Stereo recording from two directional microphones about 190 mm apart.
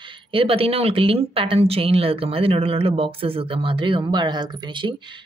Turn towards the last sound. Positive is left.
turn(degrees=-25)  # may be behind; listen again after turning